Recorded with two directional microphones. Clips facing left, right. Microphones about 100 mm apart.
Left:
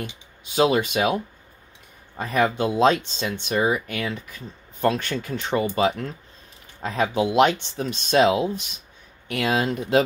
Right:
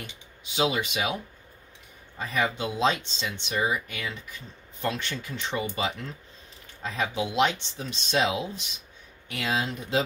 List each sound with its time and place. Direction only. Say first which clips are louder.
0.6 s speech: left 7 dB; 45° left (ahead or behind)